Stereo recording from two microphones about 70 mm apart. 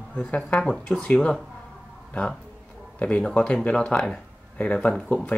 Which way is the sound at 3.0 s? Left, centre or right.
Centre.